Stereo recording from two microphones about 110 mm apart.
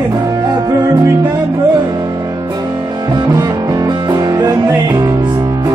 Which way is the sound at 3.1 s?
35° right (ahead or behind).